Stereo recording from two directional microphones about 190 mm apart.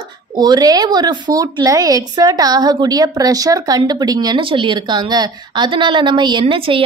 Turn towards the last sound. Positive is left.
turn(degrees=-25)  # may be behind; listen again after turning